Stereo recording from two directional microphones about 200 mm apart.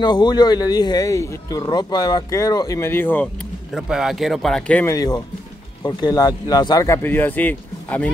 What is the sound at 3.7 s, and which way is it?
Speech, 5° right (ahead or behind).